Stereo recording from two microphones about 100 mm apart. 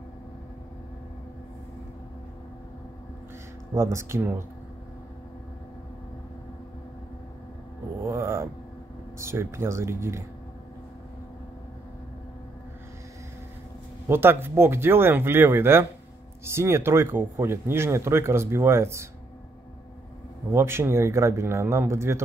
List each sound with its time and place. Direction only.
3.7 s speech: 30° right (ahead or behind)
8.0 s a sound: 25° right (ahead or behind)
9.2 s speech: 25° right (ahead or behind)
14.0 s speech: 25° right (ahead or behind)
20.5 s speech: 25° right (ahead or behind)